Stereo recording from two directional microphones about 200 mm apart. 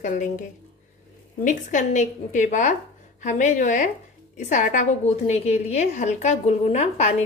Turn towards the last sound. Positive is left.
turn(degrees=35)  # may be behind; listen again after turning